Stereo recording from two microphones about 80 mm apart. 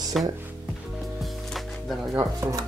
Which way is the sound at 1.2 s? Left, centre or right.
Centre.